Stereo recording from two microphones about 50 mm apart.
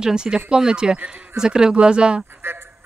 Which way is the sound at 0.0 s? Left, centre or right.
Centre.